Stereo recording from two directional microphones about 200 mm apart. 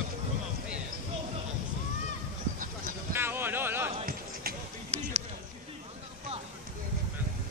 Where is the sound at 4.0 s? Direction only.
45° right (ahead or behind).